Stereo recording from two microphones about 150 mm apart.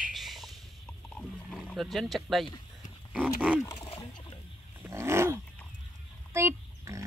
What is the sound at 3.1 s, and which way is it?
Wild animals, 10° right (ahead or behind).